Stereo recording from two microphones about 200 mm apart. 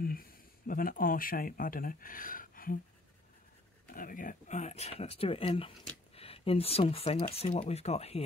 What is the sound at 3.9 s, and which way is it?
Speech, 40° left (ahead or behind).